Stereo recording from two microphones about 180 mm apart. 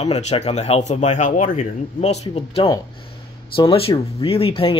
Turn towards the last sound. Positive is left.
turn(degrees=30)  # may be behind; listen again after turning